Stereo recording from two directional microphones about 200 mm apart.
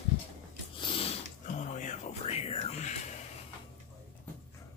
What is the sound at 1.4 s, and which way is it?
Music, 40° left (ahead or behind).